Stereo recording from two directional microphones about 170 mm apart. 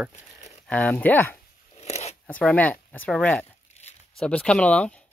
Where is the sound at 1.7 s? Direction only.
40° left (ahead or behind).